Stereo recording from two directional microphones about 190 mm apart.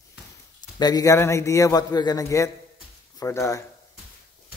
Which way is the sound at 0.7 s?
20° left (ahead or behind).